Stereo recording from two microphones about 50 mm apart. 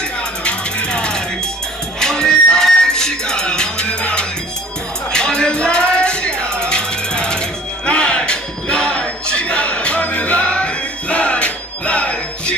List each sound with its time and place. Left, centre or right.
0.4 s ratchet: left
2.0 s music: centre